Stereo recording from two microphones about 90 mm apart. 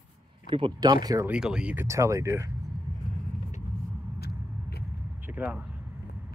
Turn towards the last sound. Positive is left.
turn(degrees=-15)  # may be behind; listen again after turning